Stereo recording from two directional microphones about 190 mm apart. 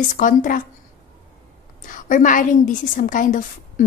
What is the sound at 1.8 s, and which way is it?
A woman's voice, 45° left (ahead or behind).